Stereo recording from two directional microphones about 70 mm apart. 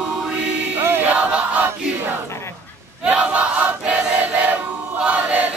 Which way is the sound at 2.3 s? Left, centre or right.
Left.